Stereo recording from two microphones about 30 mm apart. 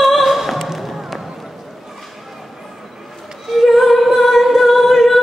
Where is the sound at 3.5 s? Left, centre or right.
Centre.